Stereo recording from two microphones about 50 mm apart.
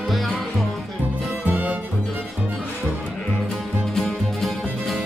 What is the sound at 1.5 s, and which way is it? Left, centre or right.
Music, right.